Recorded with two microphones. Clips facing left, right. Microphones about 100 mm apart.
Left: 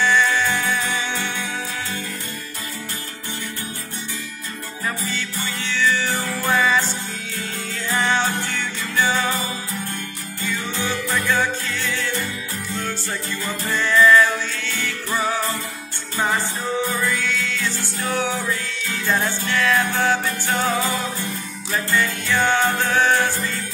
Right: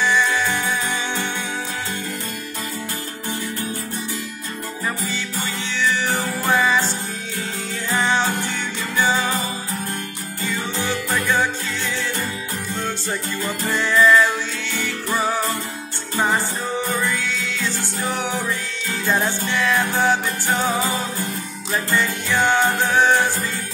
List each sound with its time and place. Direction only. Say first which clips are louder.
0.0 s music: left 1 dB; 15° right (ahead or behind)
5.7 s music: left 1 dB; 15° right (ahead or behind)
8.0 s music: right 1 dB; 10° right (ahead or behind)
10.4 s music: right 1 dB; 15° right (ahead or behind)
13.7 s music: left 1 dB; 15° right (ahead or behind)
16.9 s music: even; 15° right (ahead or behind)
21.9 s music: even; 15° right (ahead or behind)